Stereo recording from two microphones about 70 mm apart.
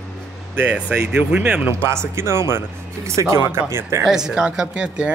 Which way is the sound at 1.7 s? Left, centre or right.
Right.